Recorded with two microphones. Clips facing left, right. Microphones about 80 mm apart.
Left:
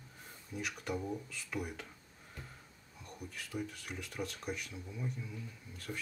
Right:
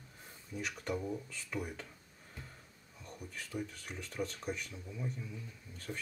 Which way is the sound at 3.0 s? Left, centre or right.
Centre.